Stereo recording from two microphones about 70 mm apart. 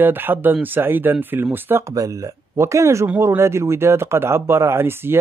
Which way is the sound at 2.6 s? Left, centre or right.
Right.